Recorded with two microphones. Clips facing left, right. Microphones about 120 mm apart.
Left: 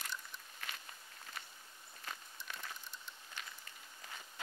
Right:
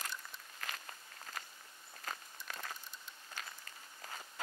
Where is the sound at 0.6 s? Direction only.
45° right (ahead or behind).